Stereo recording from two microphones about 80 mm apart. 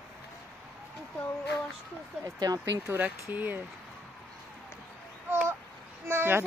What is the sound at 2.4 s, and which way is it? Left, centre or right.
Speech, right.